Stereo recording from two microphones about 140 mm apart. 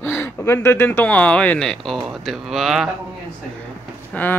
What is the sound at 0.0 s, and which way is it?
Speech, 15° left (ahead or behind).